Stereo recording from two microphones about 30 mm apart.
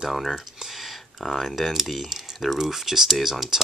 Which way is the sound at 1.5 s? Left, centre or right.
Centre.